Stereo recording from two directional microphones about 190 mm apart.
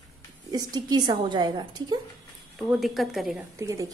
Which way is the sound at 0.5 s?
20° right (ahead or behind).